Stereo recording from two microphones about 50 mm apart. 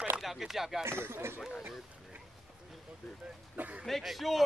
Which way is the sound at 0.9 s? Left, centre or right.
Right.